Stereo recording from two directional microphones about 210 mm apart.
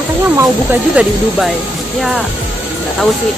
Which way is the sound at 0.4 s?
10° right (ahead or behind).